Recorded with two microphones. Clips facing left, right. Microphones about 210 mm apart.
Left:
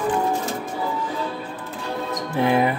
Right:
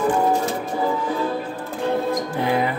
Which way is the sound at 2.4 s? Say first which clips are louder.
Left 3 dB; 20° left (ahead or behind).